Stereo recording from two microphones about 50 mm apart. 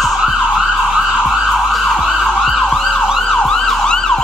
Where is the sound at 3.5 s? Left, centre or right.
Centre.